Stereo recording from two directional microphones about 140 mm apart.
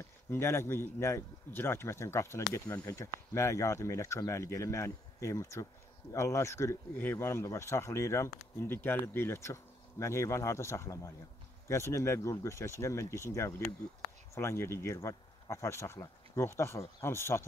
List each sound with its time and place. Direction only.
0.3 s speech: 20° left (ahead or behind)